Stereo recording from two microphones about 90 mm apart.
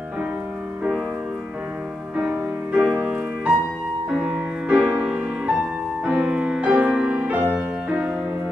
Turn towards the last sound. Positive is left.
turn(degrees=-15)  # may be behind; listen again after turning